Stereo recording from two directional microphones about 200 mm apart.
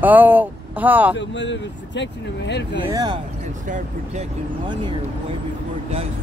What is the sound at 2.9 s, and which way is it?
Speech, 20° right (ahead or behind).